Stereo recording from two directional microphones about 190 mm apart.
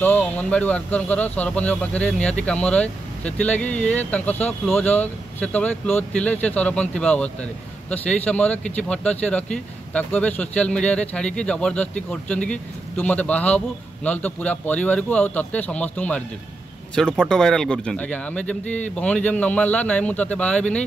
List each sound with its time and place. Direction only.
0.0 s speech: 10° left (ahead or behind)